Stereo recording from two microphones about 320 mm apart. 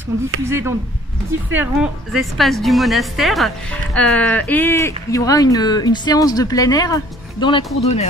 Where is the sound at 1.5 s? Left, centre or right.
Centre.